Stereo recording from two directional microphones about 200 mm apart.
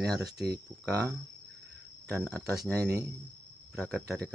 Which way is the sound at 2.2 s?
Centre (ahead or behind).